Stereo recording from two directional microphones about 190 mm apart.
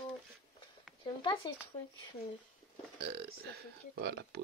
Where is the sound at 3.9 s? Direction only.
60° right (ahead or behind).